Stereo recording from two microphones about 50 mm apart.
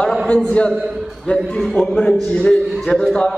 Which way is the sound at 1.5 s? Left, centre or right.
Centre.